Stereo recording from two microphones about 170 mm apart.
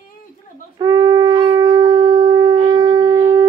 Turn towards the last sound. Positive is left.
turn(degrees=-20)  # may be behind; listen again after turning